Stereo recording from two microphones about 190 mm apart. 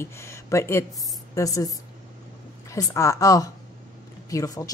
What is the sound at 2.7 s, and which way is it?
A woman's voice, 15° left (ahead or behind).